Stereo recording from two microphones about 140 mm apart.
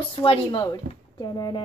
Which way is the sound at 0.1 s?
40° left (ahead or behind).